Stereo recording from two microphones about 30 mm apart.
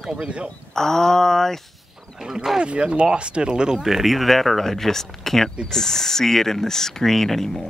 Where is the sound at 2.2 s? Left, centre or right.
Centre.